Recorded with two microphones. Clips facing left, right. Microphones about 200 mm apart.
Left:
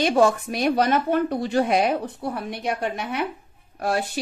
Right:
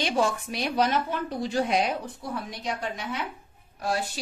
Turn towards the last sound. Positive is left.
turn(degrees=60)  # may be behind; listen again after turning